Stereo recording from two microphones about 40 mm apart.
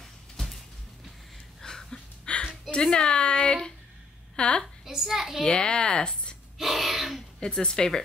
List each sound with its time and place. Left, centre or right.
1.6 s a sound: centre
2.3 s a sound: left
2.7 s speech: centre
4.8 s a child's voice: centre
5.5 s speech: left
6.6 s gasp: centre
7.3 s speech: left